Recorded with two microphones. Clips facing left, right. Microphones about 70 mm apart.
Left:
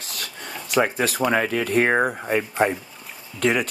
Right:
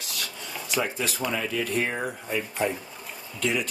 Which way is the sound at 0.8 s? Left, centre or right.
Left.